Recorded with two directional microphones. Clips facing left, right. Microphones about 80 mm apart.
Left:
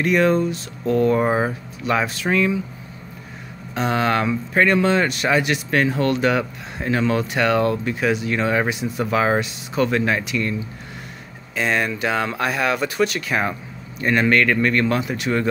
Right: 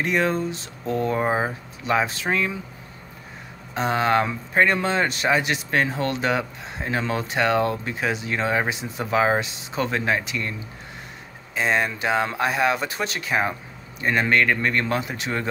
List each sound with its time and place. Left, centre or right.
0.0 s speech: right
3.7 s speech: right
11.5 s speech: right